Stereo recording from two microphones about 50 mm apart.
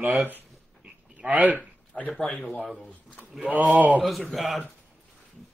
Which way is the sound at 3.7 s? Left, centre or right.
Right.